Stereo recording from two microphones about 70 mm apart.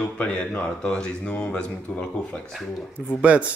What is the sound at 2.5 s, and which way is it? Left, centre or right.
Speech, centre.